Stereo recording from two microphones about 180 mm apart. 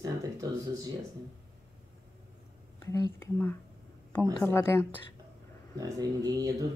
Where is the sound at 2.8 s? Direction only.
15° left (ahead or behind).